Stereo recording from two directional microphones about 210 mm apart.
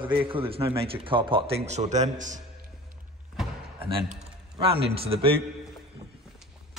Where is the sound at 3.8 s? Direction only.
25° right (ahead or behind).